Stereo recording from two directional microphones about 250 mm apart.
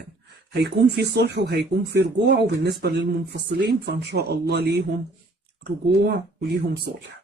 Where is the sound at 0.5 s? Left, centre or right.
Right.